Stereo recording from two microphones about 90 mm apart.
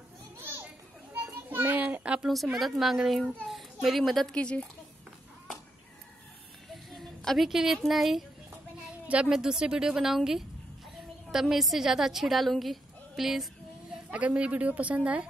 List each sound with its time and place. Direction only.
0.4 s children playing: 25° right (ahead or behind)
1.1 s child singing: 20° right (ahead or behind)
2.2 s a woman's voice: centre (ahead or behind)
6.7 s speech: centre (ahead or behind)
8.8 s a woman's voice: 15° right (ahead or behind)